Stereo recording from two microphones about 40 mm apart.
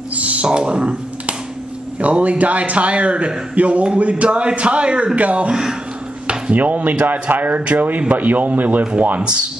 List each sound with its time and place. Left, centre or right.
0.2 s a sound: right
0.6 s speech: right
2.0 s a man's voice: right
5.5 s speech: centre
6.5 s a man's voice: right
9.2 s speech: right